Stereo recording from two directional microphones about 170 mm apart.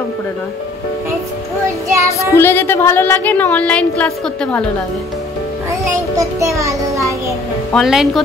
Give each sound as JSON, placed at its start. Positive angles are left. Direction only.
{"t": 2.1, "sound": "speech", "side_deg": 15}
{"t": 5.9, "sound": "music", "side_deg": -15}
{"t": 7.7, "sound": "speech", "side_deg": 0}